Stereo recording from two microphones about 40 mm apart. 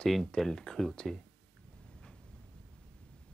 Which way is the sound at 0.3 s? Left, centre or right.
Left.